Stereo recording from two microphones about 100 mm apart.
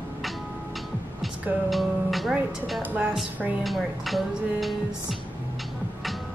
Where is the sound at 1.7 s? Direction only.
Centre (ahead or behind).